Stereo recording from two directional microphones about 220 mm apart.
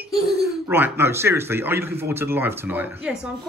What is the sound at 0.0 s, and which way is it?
Speech, 10° right (ahead or behind).